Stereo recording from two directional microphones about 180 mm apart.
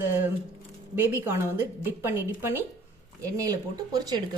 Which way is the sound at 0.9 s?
10° right (ahead or behind).